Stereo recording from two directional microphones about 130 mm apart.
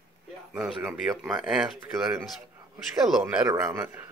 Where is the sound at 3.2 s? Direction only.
20° right (ahead or behind).